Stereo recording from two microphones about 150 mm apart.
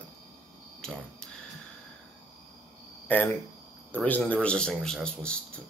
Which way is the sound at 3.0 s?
10° left (ahead or behind).